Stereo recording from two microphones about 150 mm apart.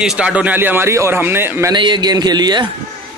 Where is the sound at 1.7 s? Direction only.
30° right (ahead or behind).